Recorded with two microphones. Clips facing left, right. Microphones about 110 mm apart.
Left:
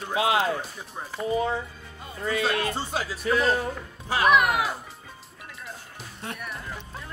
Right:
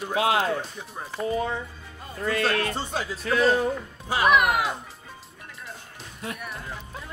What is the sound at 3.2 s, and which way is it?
Speech, centre (ahead or behind).